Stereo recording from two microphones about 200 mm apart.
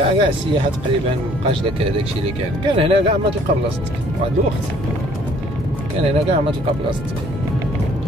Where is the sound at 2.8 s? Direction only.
25° right (ahead or behind).